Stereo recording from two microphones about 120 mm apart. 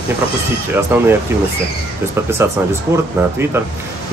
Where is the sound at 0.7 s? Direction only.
20° right (ahead or behind).